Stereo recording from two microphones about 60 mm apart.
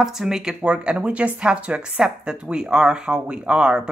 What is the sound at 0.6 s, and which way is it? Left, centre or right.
A woman's voice, right.